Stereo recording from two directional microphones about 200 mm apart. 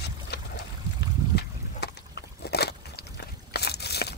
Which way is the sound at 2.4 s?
55° left (ahead or behind).